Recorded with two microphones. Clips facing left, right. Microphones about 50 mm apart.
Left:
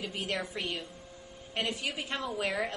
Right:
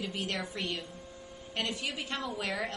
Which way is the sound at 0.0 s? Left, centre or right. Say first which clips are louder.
Left 1 dB; centre.